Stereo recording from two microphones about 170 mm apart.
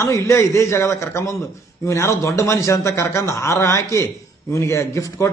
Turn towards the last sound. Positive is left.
turn(degrees=15)  # may be behind; listen again after turning